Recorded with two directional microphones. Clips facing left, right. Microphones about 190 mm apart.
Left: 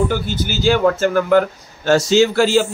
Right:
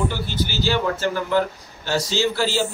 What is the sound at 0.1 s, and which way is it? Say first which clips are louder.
Speech: left 5 dB; 50° left (ahead or behind).